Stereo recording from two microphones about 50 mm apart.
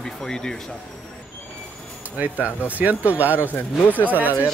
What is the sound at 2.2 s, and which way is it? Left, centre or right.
Speech, right.